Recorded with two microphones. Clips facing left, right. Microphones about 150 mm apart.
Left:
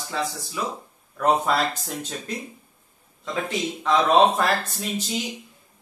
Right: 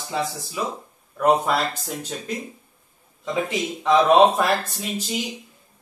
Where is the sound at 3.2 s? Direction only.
20° right (ahead or behind).